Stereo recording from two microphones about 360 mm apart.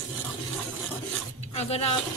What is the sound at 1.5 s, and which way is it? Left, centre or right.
Speech, centre.